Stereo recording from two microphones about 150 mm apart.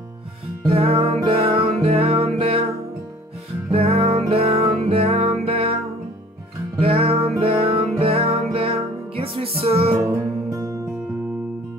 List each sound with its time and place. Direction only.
0.7 s music: 40° right (ahead or behind)
3.7 s music: 40° right (ahead or behind)
6.8 s music: 40° right (ahead or behind)
10.0 s music: 20° right (ahead or behind)